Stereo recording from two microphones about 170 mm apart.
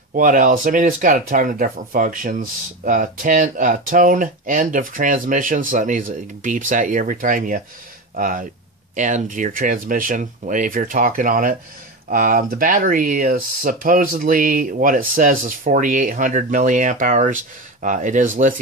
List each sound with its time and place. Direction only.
0.1 s speech: 50° right (ahead or behind)